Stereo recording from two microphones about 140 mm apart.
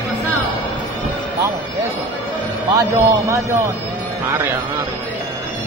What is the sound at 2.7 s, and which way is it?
Speech, 25° right (ahead or behind).